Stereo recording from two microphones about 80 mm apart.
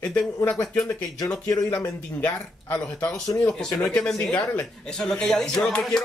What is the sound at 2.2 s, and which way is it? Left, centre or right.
Speech, centre.